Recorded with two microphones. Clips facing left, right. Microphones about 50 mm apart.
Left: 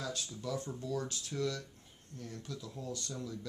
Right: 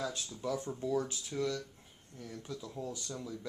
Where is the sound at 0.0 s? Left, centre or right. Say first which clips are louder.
Right 2 dB; centre.